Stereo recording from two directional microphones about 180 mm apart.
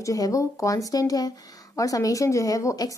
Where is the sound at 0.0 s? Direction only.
20° left (ahead or behind).